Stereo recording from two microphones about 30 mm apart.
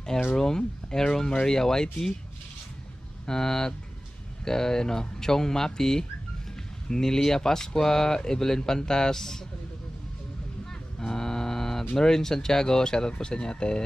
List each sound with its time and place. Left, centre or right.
0.4 s speech: centre
3.3 s speech: centre
11.0 s a sound: centre
12.0 s speech: centre